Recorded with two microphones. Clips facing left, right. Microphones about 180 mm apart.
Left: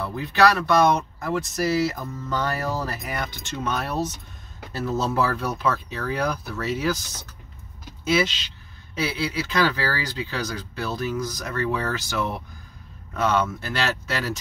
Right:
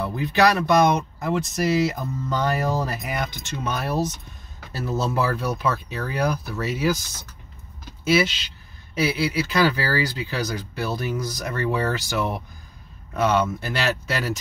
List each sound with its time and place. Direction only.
0.0 s speech: 15° right (ahead or behind)
8.0 s speech: 10° right (ahead or behind)